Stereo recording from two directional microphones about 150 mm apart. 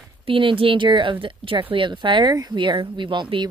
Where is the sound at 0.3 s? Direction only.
35° right (ahead or behind).